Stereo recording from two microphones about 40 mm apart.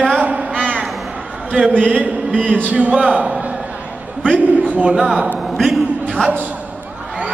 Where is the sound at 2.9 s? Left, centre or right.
Right.